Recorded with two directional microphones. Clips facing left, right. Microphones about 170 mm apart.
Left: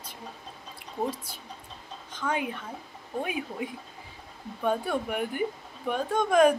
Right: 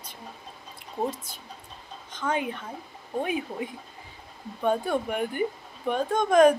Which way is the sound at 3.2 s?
5° left (ahead or behind).